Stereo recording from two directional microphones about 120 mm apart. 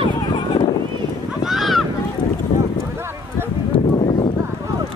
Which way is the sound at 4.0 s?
65° left (ahead or behind).